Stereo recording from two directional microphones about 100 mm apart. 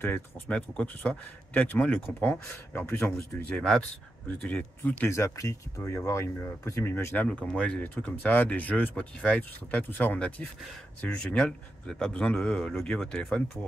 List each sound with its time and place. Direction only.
0.0 s speech: 20° left (ahead or behind)
3.4 s speech: 10° left (ahead or behind)
5.1 s speech: 30° left (ahead or behind)
7.2 s speech: 10° left (ahead or behind)